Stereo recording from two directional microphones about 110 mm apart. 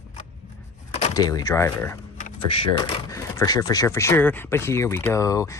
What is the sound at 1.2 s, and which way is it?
Speech, 35° left (ahead or behind).